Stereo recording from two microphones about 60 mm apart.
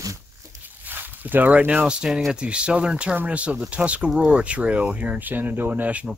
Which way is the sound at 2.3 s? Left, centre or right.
Centre.